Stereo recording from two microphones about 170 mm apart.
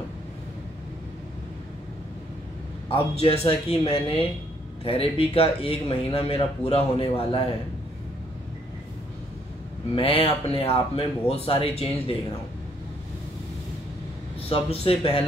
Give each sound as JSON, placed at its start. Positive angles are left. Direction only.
{"t": 2.9, "sound": "speech", "side_deg": 35}
{"t": 9.9, "sound": "speech", "side_deg": 30}
{"t": 14.5, "sound": "speech", "side_deg": 35}